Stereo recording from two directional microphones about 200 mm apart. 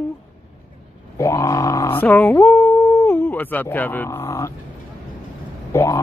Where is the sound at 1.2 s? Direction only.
15° left (ahead or behind).